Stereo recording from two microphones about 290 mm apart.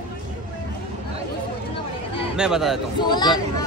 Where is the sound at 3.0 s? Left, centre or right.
Centre.